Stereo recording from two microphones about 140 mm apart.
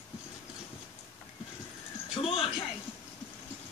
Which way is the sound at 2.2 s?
45° left (ahead or behind).